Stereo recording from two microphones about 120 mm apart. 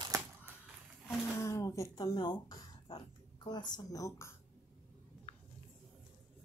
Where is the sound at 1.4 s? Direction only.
25° left (ahead or behind).